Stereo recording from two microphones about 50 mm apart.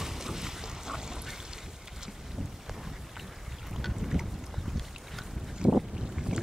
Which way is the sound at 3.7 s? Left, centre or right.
Centre.